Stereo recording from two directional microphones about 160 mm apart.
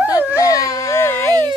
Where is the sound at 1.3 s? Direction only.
25° right (ahead or behind).